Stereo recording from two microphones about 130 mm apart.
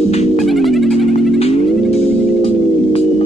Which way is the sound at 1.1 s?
50° left (ahead or behind).